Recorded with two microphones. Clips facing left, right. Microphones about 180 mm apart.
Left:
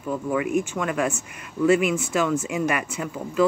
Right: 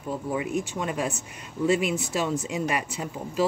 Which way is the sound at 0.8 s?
30° right (ahead or behind).